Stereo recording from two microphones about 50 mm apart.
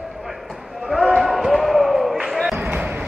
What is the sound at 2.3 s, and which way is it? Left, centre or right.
Basketball bounce, centre.